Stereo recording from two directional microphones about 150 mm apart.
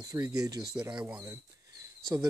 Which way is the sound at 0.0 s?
25° right (ahead or behind).